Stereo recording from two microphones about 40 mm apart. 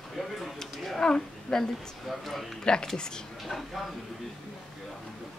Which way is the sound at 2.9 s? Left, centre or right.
Centre.